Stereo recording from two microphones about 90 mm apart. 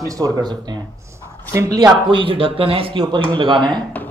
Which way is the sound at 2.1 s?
70° right (ahead or behind).